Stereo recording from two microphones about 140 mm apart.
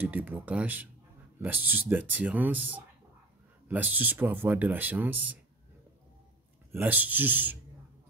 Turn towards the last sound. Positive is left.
turn(degrees=-15)  # may be behind; listen again after turning